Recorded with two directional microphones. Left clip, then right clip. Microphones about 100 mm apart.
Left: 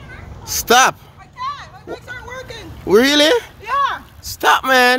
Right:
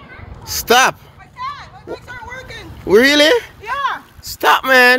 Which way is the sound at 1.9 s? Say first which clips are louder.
Right 1 dB; 25° left (ahead or behind).